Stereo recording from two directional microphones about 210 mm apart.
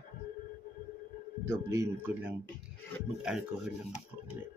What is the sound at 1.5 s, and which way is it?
Speech, 10° right (ahead or behind).